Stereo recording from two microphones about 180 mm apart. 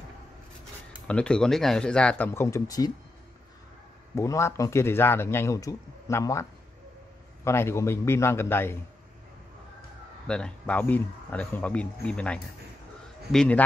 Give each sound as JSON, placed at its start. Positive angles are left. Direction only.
{"t": 1.0, "sound": "speech", "side_deg": 5}
{"t": 4.1, "sound": "speech", "side_deg": 15}
{"t": 7.4, "sound": "speech", "side_deg": 15}
{"t": 10.2, "sound": "speech", "side_deg": 5}